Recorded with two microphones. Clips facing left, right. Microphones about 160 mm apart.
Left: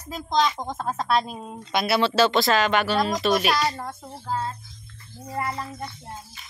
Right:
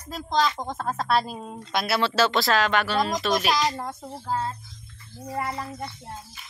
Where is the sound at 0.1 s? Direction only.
Centre (ahead or behind).